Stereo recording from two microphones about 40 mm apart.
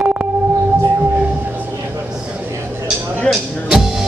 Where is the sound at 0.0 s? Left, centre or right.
Right.